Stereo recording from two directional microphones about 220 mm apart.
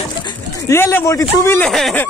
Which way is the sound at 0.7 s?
10° left (ahead or behind).